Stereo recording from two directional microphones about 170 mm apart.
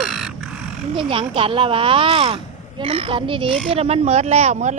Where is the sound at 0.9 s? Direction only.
30° right (ahead or behind).